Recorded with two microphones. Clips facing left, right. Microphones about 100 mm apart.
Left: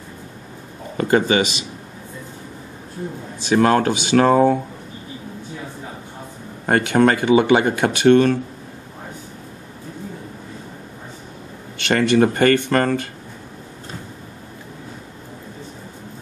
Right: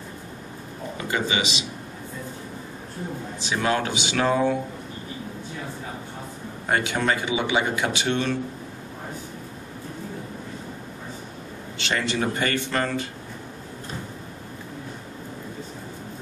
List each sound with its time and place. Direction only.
0.9 s speech: 50° left (ahead or behind)
3.4 s speech: 50° left (ahead or behind)
6.6 s speech: 50° left (ahead or behind)
11.8 s speech: 55° left (ahead or behind)